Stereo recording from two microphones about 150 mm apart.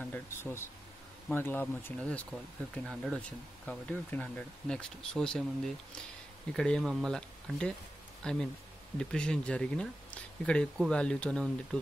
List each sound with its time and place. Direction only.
0.0 s speech: 15° left (ahead or behind)
6.5 s speech: 5° left (ahead or behind)